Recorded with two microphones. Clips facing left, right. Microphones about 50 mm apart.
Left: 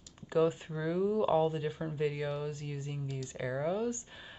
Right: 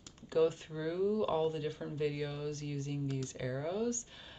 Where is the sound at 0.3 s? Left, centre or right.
Centre.